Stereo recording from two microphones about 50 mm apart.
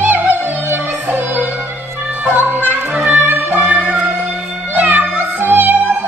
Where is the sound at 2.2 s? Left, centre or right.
Right.